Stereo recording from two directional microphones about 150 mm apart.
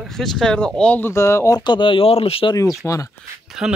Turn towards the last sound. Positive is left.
turn(degrees=0)  # may be behind; listen again after turning